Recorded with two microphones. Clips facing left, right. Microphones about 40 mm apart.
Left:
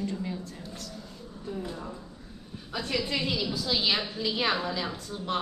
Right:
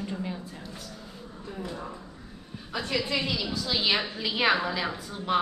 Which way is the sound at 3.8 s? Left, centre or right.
Centre.